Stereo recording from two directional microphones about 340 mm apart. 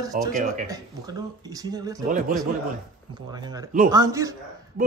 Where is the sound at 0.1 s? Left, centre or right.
Right.